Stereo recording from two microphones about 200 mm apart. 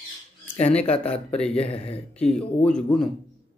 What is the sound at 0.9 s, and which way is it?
Speech, 30° left (ahead or behind).